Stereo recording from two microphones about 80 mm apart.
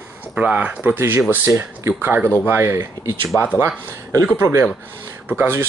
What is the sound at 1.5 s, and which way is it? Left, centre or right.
Speech, right.